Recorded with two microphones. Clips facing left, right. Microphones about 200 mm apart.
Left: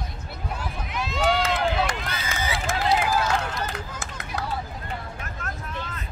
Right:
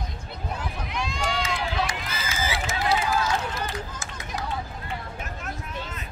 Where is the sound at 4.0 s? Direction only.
60° left (ahead or behind).